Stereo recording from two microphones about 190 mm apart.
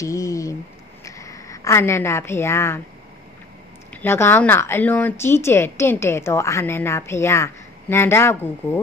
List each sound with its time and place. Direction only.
0.0 s a sound: 15° left (ahead or behind)
1.0 s a woman's voice: 15° left (ahead or behind)
3.9 s a woman's voice: 10° left (ahead or behind)